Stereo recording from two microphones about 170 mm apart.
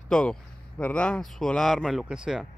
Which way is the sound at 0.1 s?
5° left (ahead or behind).